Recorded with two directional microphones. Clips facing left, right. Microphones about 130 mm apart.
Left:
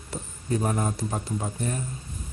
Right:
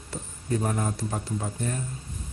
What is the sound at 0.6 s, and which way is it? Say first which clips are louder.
Speech: left 1 dB; 20° left (ahead or behind).